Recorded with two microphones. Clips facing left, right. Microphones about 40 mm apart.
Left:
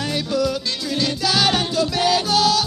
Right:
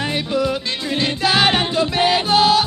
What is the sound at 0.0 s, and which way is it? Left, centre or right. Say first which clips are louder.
Music: right 1 dB; right.